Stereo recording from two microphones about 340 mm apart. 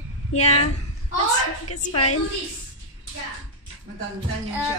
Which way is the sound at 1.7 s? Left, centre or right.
Left.